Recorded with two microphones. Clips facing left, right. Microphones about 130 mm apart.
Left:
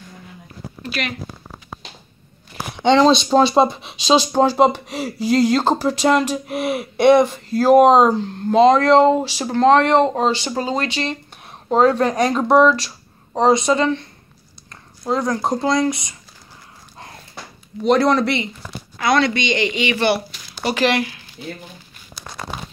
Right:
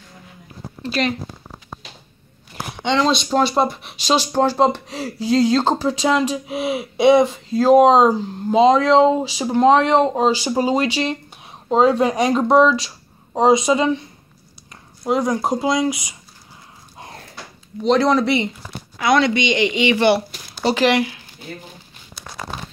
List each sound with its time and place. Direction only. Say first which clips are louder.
0.8 s speech: right 6 dB; 30° right (ahead or behind)
2.8 s speech: left 5 dB; 35° left (ahead or behind); by 4.3 s 20° left (ahead or behind)
4.3 s speech: left 2 dB; 10° left (ahead or behind); by 16.2 s 10° right (ahead or behind)
17.8 s speech: even; 5° left (ahead or behind)
18.9 s speech: right 1 dB; 15° right (ahead or behind)